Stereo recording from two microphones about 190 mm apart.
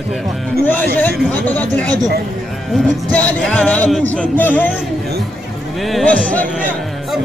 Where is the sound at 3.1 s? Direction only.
5° left (ahead or behind).